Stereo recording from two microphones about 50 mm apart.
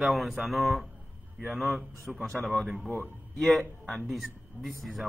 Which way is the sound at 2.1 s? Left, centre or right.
Centre.